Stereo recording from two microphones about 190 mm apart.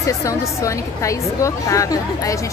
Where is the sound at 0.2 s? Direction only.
15° left (ahead or behind).